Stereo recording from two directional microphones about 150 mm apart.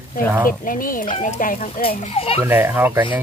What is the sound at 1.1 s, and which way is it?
Speech, 55° left (ahead or behind).